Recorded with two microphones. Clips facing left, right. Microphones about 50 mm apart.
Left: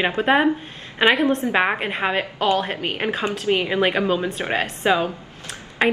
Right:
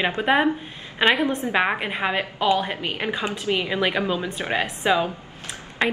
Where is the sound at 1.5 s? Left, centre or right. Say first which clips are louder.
Left 2 dB; centre.